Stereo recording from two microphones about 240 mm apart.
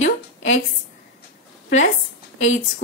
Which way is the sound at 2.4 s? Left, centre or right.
Left.